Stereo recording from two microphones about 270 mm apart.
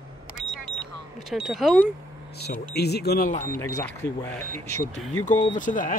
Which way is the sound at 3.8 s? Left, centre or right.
Centre.